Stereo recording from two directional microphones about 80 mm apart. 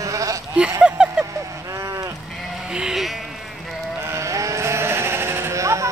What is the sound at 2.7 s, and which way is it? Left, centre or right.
Sheep, centre.